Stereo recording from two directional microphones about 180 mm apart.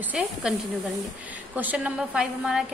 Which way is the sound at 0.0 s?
5° right (ahead or behind).